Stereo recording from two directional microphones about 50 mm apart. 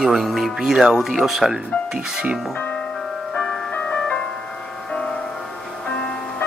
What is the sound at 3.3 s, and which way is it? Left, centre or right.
Music, centre.